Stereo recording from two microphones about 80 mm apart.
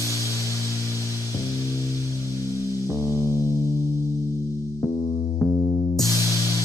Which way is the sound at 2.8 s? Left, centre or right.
Right.